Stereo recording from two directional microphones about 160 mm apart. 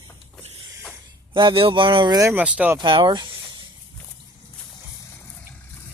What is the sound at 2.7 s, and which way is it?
Speech, 30° right (ahead or behind).